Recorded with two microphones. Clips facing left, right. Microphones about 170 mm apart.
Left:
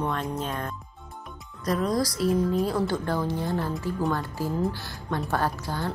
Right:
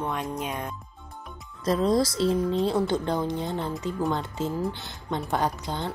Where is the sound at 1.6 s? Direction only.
25° right (ahead or behind).